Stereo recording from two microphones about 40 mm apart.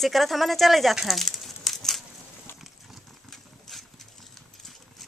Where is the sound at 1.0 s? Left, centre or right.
Centre.